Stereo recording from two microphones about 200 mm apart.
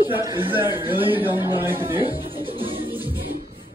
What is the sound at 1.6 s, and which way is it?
Speech, 10° right (ahead or behind).